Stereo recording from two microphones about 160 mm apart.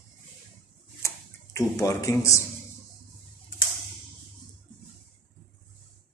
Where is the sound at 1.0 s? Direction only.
20° left (ahead or behind).